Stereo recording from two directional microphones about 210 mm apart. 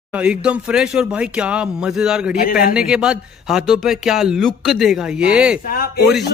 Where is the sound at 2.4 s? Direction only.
45° left (ahead or behind).